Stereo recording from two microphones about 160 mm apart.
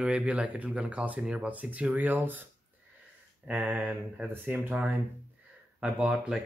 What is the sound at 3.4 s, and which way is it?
Speech, 10° right (ahead or behind).